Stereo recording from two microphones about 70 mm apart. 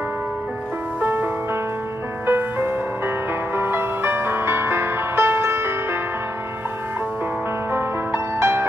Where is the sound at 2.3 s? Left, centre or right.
Right.